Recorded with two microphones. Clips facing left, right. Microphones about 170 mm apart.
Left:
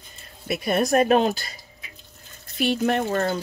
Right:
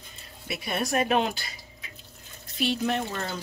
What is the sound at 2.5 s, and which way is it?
Speech, 55° left (ahead or behind).